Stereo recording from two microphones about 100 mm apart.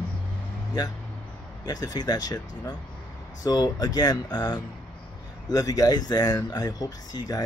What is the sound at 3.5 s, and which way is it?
Speech, 40° left (ahead or behind).